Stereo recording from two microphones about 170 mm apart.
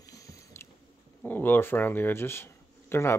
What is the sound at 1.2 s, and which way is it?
Speech, 10° left (ahead or behind).